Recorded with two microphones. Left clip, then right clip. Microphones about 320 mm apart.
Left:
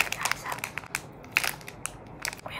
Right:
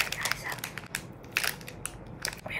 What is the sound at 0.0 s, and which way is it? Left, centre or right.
Crumpling, centre.